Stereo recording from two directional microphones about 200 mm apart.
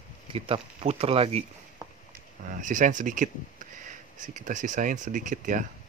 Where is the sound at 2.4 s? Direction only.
40° right (ahead or behind).